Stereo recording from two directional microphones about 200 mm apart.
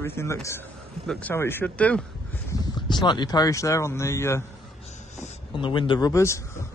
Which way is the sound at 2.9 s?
20° left (ahead or behind).